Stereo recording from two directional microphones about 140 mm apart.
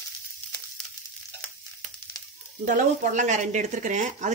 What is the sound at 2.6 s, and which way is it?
Speech, 65° right (ahead or behind).